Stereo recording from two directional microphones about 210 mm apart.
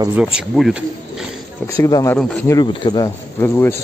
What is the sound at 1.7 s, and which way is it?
Speech, 15° left (ahead or behind).